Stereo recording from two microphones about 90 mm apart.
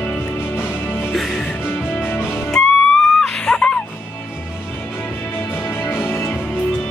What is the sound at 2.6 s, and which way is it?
Music, 5° left (ahead or behind).